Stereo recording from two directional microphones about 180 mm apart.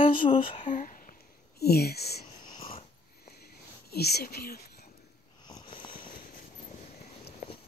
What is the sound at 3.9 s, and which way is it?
Speech, 65° left (ahead or behind).